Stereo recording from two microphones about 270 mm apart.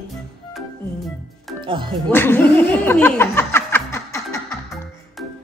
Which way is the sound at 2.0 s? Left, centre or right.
Centre.